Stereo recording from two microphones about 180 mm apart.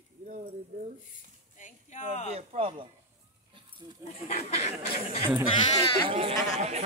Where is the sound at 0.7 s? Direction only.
50° right (ahead or behind).